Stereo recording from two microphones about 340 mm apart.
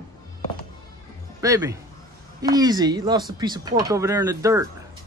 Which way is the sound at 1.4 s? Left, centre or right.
Centre.